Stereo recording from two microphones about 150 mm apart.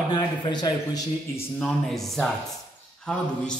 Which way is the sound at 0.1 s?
30° left (ahead or behind).